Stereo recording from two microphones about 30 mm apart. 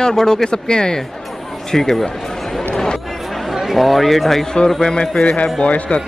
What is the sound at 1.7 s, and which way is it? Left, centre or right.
Speech, centre.